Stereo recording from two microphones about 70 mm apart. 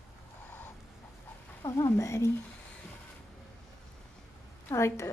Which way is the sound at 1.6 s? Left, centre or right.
Left.